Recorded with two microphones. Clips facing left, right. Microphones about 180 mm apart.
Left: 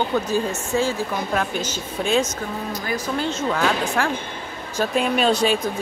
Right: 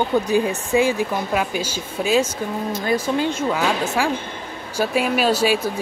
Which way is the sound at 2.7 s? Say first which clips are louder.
Right 6 dB; 25° right (ahead or behind).